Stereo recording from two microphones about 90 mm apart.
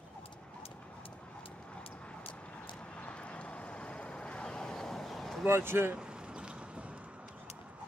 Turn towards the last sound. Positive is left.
turn(degrees=-10)  # may be behind; listen again after turning